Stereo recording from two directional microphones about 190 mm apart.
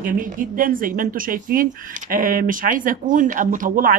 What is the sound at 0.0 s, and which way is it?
Speech, 45° right (ahead or behind).